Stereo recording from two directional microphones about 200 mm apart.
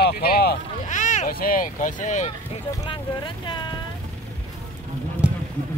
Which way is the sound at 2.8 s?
20° left (ahead or behind).